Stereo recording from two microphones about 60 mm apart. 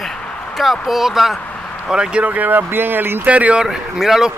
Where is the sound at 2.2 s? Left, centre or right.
Right.